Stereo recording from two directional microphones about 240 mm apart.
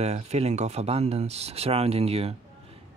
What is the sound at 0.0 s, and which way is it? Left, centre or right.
Speech, right.